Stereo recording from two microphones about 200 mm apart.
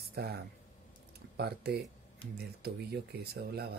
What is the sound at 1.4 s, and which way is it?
Speech, 55° right (ahead or behind).